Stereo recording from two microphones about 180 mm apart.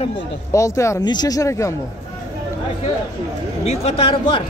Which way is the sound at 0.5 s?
15° left (ahead or behind).